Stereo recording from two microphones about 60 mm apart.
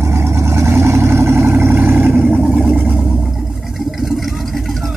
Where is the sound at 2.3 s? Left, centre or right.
Centre.